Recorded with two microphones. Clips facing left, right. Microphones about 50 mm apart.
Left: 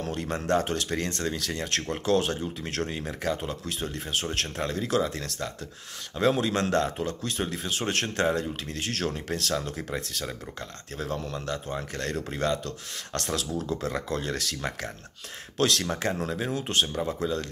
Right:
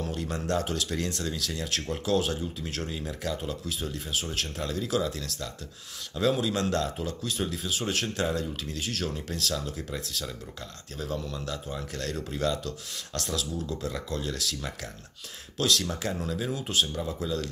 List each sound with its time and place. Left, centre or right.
0.0 s speech: left
3.3 s speech: left
3.6 s speech: left
4.6 s speech: left
6.3 s speech: left
6.7 s speech: left
11.0 s speech: left
15.9 s speech: left
16.5 s speech: left